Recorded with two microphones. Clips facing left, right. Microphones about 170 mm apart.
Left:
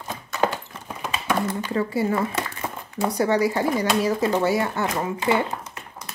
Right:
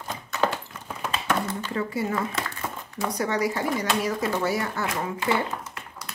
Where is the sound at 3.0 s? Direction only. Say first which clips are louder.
Left 5 dB; 30° left (ahead or behind).